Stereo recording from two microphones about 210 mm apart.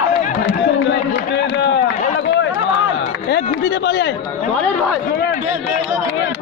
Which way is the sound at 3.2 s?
55° left (ahead or behind).